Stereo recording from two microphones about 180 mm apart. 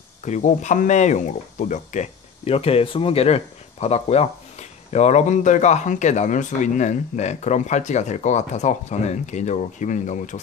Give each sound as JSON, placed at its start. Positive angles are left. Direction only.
{"t": 0.2, "sound": "speech", "side_deg": 40}